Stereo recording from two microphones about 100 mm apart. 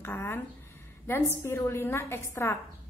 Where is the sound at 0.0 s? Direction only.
20° left (ahead or behind).